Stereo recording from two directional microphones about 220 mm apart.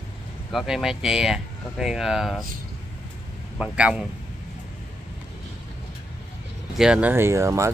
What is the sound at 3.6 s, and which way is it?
Speech, 5° right (ahead or behind).